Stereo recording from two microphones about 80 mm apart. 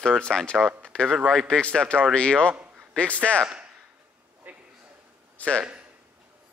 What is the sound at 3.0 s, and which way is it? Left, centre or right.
Speech, centre.